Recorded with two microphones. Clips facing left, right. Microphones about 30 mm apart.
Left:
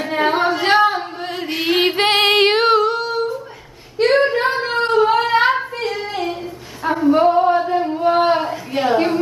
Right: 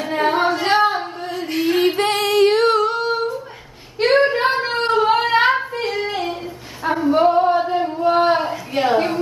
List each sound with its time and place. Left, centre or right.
0.0 s female singing: centre
1.6 s female singing: left
2.6 s female singing: centre
4.0 s a sound: centre